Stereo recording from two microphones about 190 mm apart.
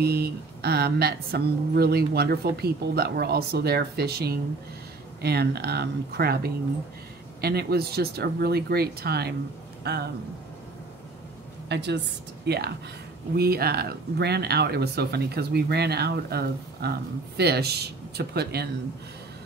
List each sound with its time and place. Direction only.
0.0 s speech: 55° right (ahead or behind)
11.7 s speech: 65° right (ahead or behind)